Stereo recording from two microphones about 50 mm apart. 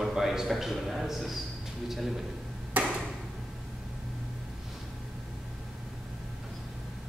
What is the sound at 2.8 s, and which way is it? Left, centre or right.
Tick-tock, right.